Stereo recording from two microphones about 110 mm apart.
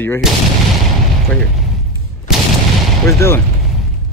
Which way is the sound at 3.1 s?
25° left (ahead or behind).